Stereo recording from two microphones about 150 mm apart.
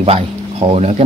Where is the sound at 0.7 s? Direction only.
45° right (ahead or behind).